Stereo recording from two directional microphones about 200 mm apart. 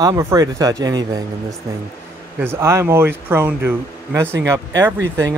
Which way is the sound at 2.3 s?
10° right (ahead or behind).